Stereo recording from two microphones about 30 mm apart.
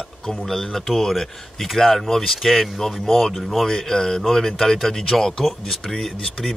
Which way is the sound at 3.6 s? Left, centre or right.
Centre.